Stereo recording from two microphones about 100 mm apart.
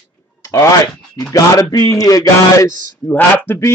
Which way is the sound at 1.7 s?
35° left (ahead or behind).